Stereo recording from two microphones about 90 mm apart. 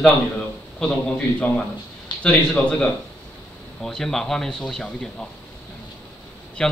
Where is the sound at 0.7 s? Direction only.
10° left (ahead or behind).